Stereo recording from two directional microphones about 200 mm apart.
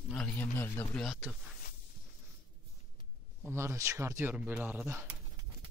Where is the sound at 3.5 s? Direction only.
15° right (ahead or behind).